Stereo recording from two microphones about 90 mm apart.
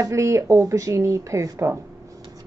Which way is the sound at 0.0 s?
35° right (ahead or behind).